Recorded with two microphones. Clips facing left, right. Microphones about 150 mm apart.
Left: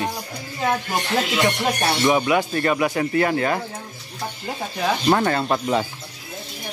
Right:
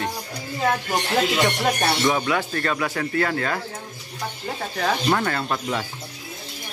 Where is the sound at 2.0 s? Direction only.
15° left (ahead or behind).